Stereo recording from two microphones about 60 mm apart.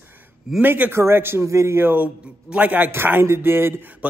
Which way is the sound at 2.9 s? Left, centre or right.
Right.